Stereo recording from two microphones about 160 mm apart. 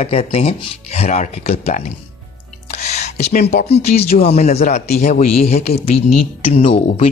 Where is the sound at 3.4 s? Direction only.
40° left (ahead or behind).